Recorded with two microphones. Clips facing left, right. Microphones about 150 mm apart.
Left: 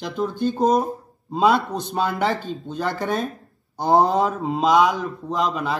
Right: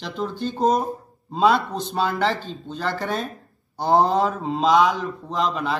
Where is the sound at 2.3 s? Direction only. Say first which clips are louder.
Left 2 dB; 50° left (ahead or behind).